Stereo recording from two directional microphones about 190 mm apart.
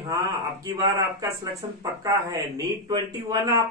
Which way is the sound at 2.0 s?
20° right (ahead or behind).